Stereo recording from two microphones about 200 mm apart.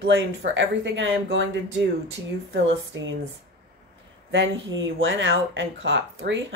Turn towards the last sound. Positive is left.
turn(degrees=-65)  # may be behind; listen again after turning